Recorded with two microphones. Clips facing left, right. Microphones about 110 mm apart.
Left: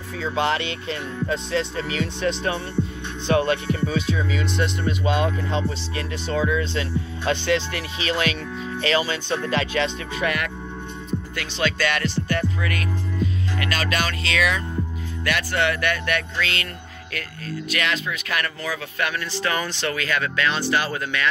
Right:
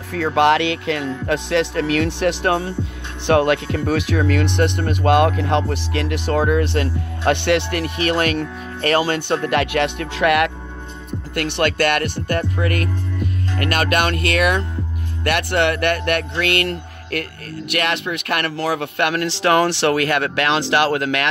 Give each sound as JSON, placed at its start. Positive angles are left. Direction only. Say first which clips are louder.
{"t": 0.1, "sound": "speech", "louder": "right 8 dB", "side_deg": -65}